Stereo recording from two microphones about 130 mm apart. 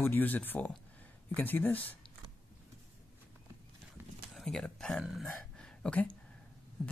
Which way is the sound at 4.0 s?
15° right (ahead or behind).